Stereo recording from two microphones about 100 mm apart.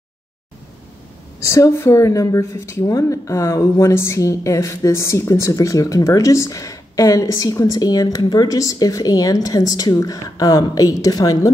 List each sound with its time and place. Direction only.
1.4 s a woman's voice: 30° left (ahead or behind)